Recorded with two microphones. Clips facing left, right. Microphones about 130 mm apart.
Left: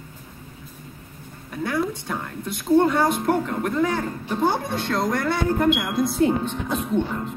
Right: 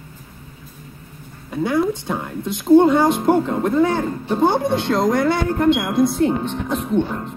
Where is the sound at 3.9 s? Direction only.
25° right (ahead or behind).